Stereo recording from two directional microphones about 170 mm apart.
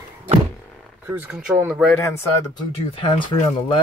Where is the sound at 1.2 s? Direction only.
10° right (ahead or behind).